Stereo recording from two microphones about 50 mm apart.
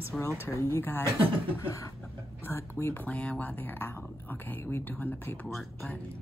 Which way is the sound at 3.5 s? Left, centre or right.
Left.